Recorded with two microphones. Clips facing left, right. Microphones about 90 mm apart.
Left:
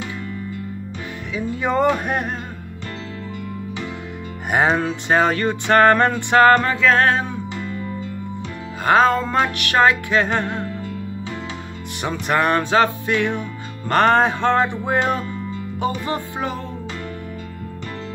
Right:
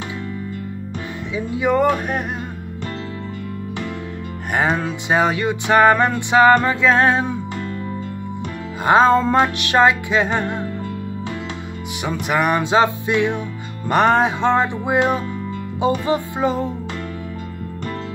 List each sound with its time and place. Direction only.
1.6 s speech: 5° right (ahead or behind)
4.5 s speech: centre (ahead or behind)
5.1 s music: 10° right (ahead or behind)
8.8 s music: 25° right (ahead or behind); by 10.6 s 10° right (ahead or behind)
12.0 s music: 5° right (ahead or behind); by 16.6 s 20° right (ahead or behind)